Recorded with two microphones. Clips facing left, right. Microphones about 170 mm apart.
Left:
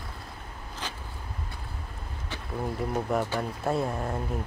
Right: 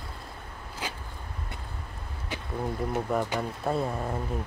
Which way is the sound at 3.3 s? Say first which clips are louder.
Left 1 dB; 5° left (ahead or behind).